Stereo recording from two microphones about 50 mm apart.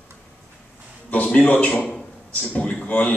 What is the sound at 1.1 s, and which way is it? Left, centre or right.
A man's voice, left.